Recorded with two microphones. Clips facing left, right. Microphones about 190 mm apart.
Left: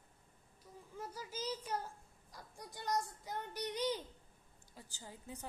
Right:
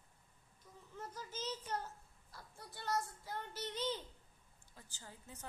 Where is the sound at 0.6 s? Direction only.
10° left (ahead or behind).